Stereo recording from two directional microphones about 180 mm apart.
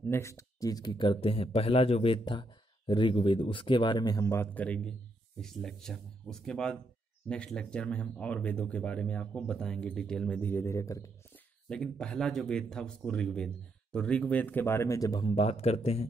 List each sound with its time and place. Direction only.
0.0 s speech: 15° left (ahead or behind)
11.7 s speech: 5° left (ahead or behind); by 16.1 s 35° left (ahead or behind)